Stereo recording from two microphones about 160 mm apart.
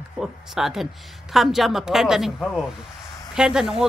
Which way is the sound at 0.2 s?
Centre (ahead or behind).